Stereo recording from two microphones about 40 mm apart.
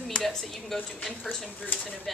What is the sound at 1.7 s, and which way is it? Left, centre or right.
Speech, left.